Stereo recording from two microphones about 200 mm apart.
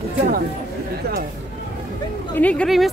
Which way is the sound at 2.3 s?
5° left (ahead or behind).